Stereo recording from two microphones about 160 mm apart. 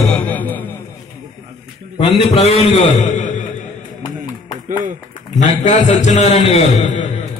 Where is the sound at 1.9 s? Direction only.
35° left (ahead or behind).